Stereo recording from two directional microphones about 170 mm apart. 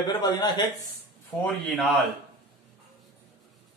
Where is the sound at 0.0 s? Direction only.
25° left (ahead or behind).